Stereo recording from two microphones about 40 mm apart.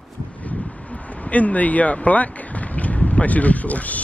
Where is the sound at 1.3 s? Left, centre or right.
Left.